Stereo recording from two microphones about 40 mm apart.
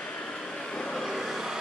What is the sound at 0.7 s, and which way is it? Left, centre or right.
Vehicle, centre.